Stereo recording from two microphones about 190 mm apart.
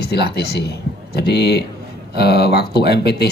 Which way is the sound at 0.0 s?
60° left (ahead or behind).